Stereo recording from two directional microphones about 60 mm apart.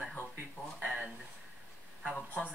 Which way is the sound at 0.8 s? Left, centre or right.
Centre.